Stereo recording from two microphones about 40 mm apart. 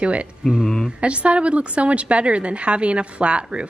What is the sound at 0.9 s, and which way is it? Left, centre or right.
A woman's voice, right.